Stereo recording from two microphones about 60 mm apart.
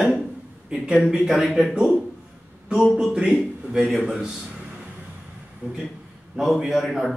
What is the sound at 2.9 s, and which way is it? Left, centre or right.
A man's voice, centre.